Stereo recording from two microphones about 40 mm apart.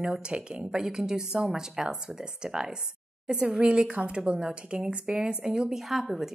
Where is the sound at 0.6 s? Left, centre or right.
Centre.